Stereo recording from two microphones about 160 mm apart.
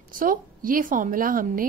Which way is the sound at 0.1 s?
60° right (ahead or behind).